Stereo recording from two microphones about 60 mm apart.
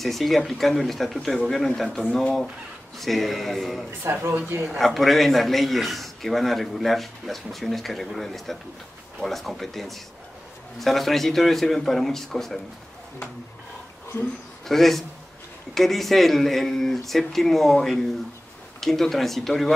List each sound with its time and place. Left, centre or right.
0.0 s a man's voice: centre
4.0 s speech: right
4.7 s a man's voice: centre
14.7 s a man's voice: centre